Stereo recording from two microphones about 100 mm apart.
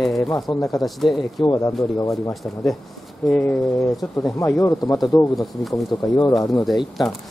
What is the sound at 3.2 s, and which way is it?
Speech, 10° left (ahead or behind).